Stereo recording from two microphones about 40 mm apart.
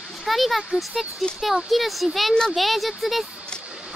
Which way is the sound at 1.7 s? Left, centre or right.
Centre.